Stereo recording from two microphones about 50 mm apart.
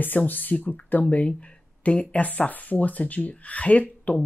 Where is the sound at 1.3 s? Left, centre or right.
Left.